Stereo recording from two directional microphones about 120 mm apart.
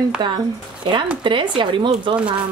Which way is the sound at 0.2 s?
40° right (ahead or behind).